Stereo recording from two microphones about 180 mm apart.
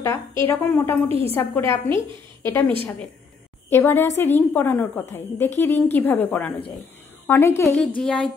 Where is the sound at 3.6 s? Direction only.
10° left (ahead or behind).